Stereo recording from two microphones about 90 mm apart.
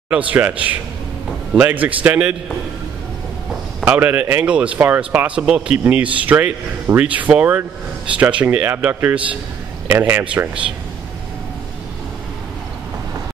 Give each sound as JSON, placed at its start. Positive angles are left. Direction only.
{"t": 0.1, "sound": "speech", "side_deg": -15}
{"t": 3.8, "sound": "speech", "side_deg": -20}
{"t": 9.8, "sound": "speech", "side_deg": -25}